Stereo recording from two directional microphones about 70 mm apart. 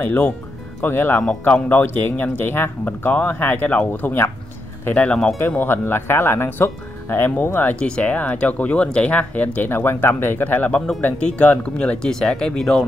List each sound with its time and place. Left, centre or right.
0.0 s speech: left
5.6 s speech: left
7.8 s speech: centre